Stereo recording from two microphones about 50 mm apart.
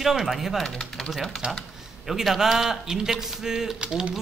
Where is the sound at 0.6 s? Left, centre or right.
Centre.